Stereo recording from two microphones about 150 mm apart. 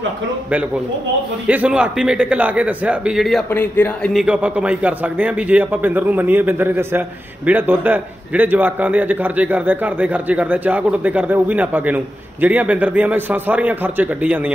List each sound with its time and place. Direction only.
1.5 s a man's voice: 10° right (ahead or behind)
3.4 s speech: 10° left (ahead or behind)
4.1 s a man's voice: 5° right (ahead or behind)